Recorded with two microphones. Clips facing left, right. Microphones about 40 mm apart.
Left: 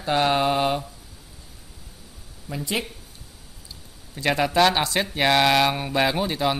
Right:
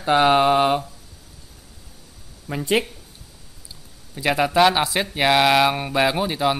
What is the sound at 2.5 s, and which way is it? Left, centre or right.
Speech, right.